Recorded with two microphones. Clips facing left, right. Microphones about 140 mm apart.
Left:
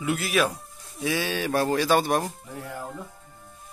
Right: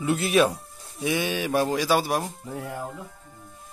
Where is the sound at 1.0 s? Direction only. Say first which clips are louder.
Right 1 dB; 20° right (ahead or behind).